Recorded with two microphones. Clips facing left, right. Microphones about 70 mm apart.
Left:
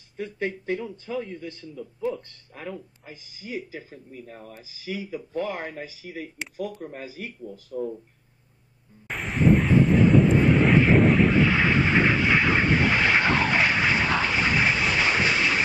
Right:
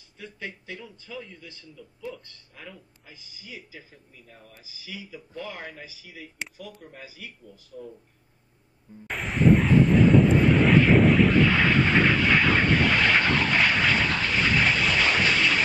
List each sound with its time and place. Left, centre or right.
0.2 s a man's voice: left
9.1 s vehicle: centre
11.3 s vehicle: centre